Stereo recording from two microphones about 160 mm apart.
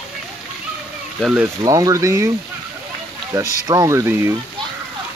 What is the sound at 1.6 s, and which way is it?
Speech, 20° right (ahead or behind).